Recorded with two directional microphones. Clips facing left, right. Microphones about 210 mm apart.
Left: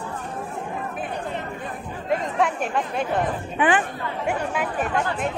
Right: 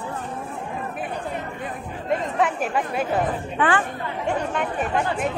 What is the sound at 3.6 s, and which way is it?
A woman's voice, 15° left (ahead or behind).